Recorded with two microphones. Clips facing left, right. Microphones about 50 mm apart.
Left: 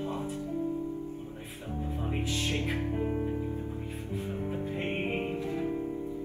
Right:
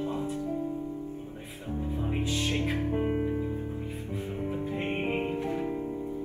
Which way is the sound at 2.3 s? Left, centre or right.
Right.